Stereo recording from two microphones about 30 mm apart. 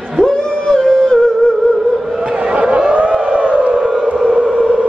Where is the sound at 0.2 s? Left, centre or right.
Left.